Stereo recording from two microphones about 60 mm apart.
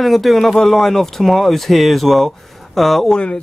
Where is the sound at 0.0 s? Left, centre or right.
Centre.